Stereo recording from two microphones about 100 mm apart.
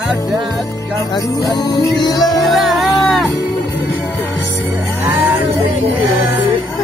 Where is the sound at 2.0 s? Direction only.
40° left (ahead or behind).